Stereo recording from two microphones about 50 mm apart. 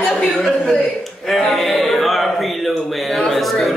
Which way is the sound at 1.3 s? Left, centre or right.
Centre.